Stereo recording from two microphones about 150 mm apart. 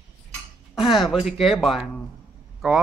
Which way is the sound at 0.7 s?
Centre (ahead or behind).